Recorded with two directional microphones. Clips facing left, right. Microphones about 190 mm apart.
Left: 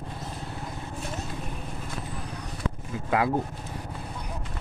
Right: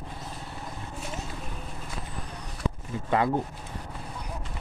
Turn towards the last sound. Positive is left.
turn(degrees=5)  # may be behind; listen again after turning